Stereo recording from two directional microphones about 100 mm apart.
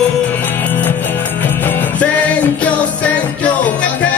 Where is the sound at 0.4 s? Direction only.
20° left (ahead or behind).